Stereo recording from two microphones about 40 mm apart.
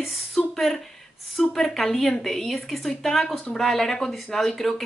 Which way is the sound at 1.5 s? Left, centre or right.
Centre.